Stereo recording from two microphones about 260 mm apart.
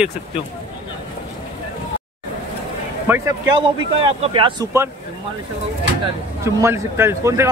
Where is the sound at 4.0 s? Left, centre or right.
Right.